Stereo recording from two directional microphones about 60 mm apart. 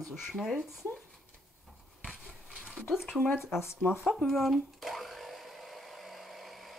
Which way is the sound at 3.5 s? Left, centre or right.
Left.